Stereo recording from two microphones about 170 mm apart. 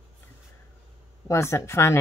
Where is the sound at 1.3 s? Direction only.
15° left (ahead or behind).